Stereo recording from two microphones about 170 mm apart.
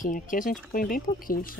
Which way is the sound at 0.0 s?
50° left (ahead or behind).